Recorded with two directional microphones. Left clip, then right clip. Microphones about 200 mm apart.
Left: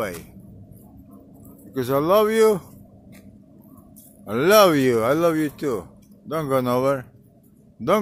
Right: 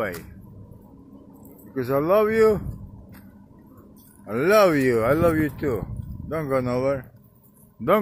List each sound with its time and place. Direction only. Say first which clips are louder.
1.8 s speech: left 2 dB; 15° left (ahead or behind)
4.3 s speech: left 3 dB; 15° left (ahead or behind)